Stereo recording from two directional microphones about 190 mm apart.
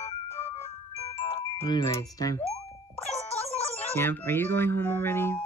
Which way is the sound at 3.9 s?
10° left (ahead or behind).